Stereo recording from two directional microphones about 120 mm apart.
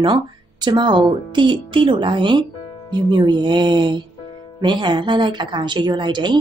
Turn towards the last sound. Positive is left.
turn(degrees=-40)  # may be behind; listen again after turning